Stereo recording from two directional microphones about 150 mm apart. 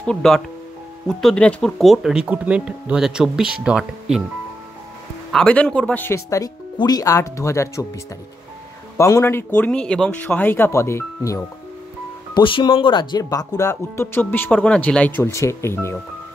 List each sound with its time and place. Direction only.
0.0 s speech: 5° left (ahead or behind)
5.3 s speech: 5° left (ahead or behind)
8.9 s a man's voice: 20° left (ahead or behind)
12.4 s speech: 35° left (ahead or behind); by 16.0 s 15° left (ahead or behind)